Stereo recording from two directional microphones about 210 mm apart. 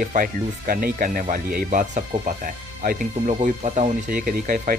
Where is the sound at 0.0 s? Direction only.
40° right (ahead or behind).